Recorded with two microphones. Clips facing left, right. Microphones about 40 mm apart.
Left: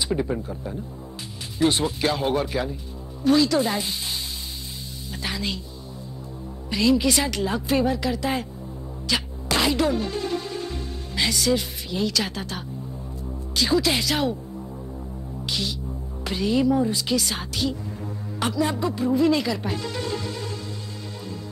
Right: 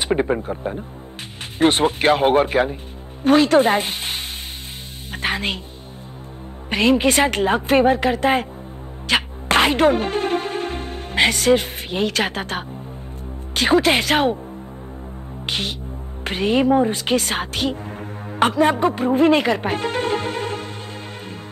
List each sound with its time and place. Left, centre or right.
0.0 s a woman's voice: right
6.7 s a woman's voice: right
9.0 s music: right
13.6 s a woman's voice: right
15.4 s music: right
16.3 s speech: right